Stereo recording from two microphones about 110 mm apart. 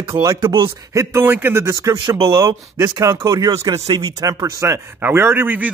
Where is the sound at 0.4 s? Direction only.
50° right (ahead or behind).